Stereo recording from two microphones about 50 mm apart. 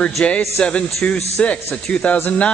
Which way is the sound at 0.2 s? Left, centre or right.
Left.